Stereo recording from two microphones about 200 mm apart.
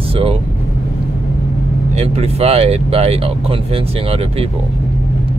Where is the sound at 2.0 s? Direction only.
30° right (ahead or behind).